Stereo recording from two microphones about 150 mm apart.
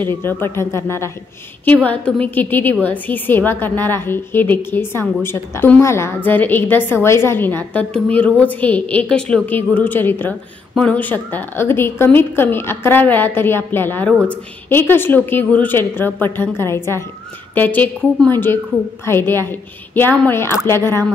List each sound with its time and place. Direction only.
0.1 s a woman's voice: 15° left (ahead or behind)